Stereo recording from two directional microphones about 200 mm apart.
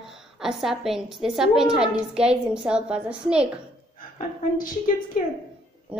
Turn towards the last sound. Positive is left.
turn(degrees=45)  # may be behind; listen again after turning